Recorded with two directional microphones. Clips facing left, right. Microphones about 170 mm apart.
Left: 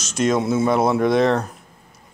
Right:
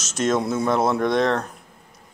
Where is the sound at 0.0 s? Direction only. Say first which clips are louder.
Left 2 dB; centre (ahead or behind).